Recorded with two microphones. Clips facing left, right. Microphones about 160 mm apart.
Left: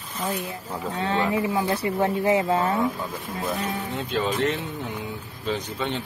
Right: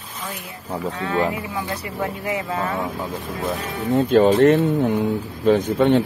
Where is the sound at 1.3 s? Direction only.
25° left (ahead or behind).